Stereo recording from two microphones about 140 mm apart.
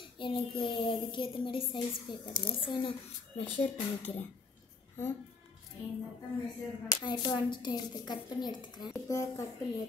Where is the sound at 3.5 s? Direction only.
55° left (ahead or behind).